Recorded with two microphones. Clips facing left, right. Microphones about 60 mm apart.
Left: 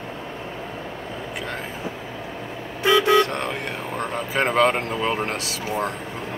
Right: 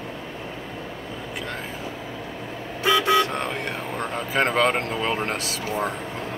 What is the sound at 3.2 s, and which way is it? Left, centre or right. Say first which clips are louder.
Speech: even; centre.